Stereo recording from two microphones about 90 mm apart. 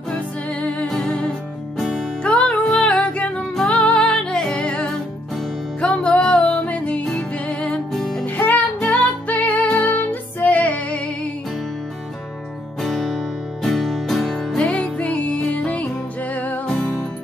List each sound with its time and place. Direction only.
0.1 s music: 15° left (ahead or behind)
1.8 s music: centre (ahead or behind)
2.2 s music: 10° left (ahead or behind)
8.4 s music: 15° left (ahead or behind)
12.8 s music: centre (ahead or behind)